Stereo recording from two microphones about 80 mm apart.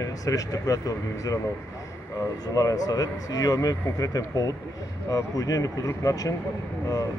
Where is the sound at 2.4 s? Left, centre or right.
Left.